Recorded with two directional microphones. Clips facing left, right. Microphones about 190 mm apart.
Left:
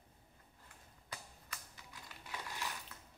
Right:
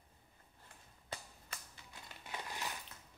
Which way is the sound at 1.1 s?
30° right (ahead or behind).